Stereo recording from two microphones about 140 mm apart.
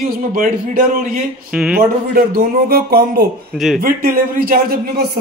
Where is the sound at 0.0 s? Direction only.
80° right.